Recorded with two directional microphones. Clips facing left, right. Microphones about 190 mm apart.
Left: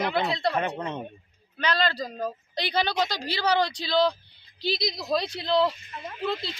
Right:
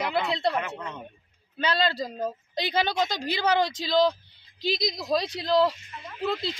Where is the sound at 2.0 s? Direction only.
25° right (ahead or behind).